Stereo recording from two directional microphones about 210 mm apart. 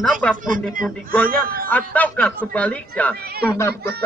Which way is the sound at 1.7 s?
5° left (ahead or behind).